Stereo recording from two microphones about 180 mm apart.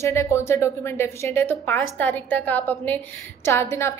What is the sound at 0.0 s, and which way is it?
A woman's voice, 15° left (ahead or behind).